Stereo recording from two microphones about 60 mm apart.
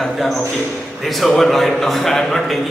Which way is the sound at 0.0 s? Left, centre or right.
Centre.